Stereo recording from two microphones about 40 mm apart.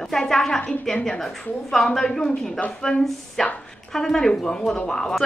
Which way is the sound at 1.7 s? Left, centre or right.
Centre.